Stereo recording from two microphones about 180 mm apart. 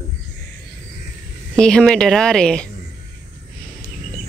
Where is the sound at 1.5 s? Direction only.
5° left (ahead or behind).